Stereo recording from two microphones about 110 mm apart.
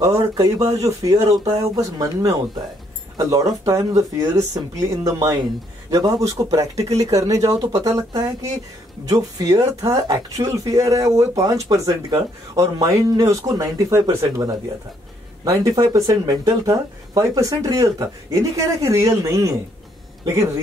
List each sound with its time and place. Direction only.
0.0 s speech: 30° right (ahead or behind)